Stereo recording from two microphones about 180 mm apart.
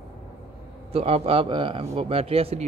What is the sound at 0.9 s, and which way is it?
Speech, 35° right (ahead or behind).